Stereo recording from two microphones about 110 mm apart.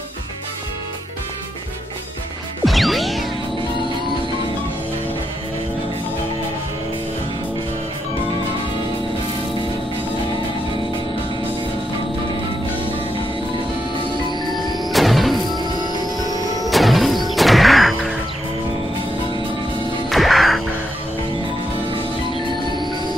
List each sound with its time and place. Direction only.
2.6 s music: centre (ahead or behind)
14.9 s music: centre (ahead or behind)
15.6 s music: 40° right (ahead or behind)
16.6 s music: centre (ahead or behind)
20.1 s music: centre (ahead or behind)